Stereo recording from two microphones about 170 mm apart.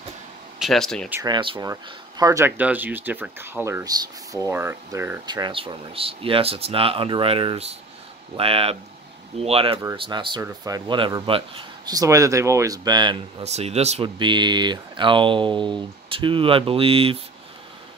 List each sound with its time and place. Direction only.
0.6 s speech: centre (ahead or behind)
1.2 s speech: 30° right (ahead or behind)
5.2 s speech: 25° right (ahead or behind)
13.4 s speech: 40° right (ahead or behind)